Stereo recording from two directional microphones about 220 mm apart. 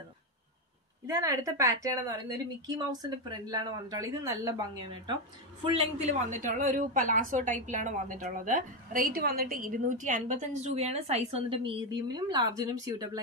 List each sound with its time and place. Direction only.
1.0 s a woman's voice: 15° right (ahead or behind)